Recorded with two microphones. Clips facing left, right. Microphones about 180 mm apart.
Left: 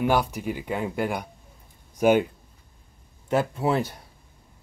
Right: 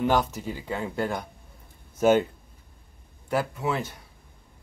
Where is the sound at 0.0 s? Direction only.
10° left (ahead or behind).